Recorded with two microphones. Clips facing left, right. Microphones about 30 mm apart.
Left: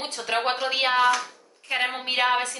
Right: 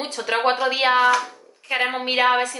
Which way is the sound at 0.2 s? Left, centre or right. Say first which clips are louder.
Right 5 dB; centre.